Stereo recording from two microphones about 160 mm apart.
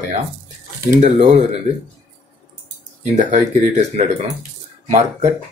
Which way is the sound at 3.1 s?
45° right (ahead or behind).